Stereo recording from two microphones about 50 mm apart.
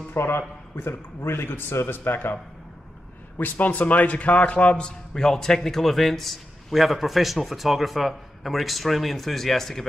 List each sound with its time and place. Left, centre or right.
0.1 s a man's voice: left
3.3 s a man's voice: left; by 9.8 s centre